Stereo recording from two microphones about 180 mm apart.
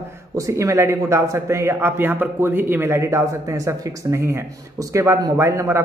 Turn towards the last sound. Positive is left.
turn(degrees=-15)  # may be behind; listen again after turning